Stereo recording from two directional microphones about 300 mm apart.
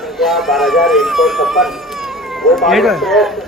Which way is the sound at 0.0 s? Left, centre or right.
Centre.